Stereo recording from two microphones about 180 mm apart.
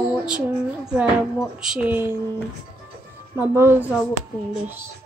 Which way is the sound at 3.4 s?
15° right (ahead or behind).